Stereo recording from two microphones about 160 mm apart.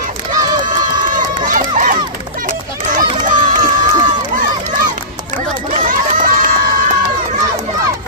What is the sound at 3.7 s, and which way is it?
Run, 55° right (ahead or behind).